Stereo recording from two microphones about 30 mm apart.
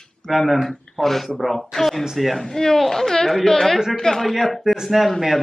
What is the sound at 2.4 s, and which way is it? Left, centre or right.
A woman's voice, centre.